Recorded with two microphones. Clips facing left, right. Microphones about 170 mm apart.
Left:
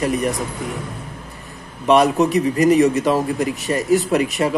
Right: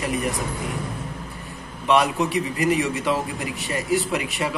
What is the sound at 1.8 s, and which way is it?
A man's voice, 45° left (ahead or behind).